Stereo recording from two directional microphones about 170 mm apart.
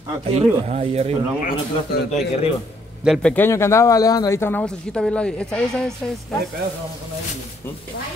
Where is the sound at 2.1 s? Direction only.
40° left (ahead or behind).